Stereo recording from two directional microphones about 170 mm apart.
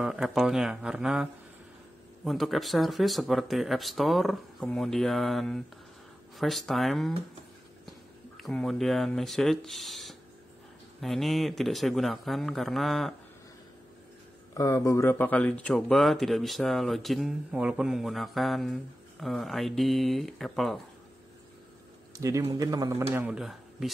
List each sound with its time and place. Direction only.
0.0 s speech: centre (ahead or behind)
8.4 s speech: centre (ahead or behind)
14.5 s speech: 20° left (ahead or behind); by 20.8 s centre (ahead or behind)
22.1 s a man's voice: 20° right (ahead or behind)
23.1 s speech: 5° right (ahead or behind)